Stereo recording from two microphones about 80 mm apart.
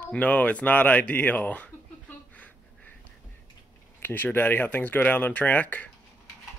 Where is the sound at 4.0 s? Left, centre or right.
Left.